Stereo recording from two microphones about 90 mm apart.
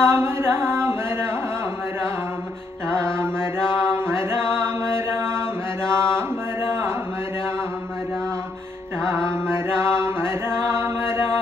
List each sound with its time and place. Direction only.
0.0 s a sound: 25° right (ahead or behind)
3.2 s mantra: 30° right (ahead or behind)
5.9 s chant: 30° right (ahead or behind)
9.0 s mantra: 30° right (ahead or behind)